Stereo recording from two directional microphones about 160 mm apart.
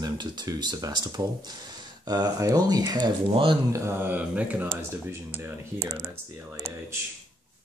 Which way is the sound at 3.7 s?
15° right (ahead or behind).